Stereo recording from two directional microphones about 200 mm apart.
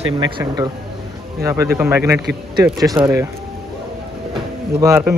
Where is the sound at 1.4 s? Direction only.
15° right (ahead or behind).